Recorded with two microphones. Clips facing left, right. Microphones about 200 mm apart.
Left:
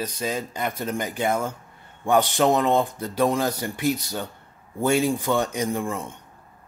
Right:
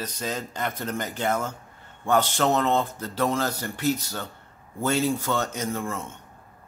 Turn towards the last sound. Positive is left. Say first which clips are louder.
# left 3 dB
turn(degrees=15)  # may be behind; listen again after turning